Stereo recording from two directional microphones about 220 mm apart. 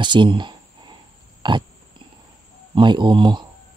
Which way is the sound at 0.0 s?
20° right (ahead or behind).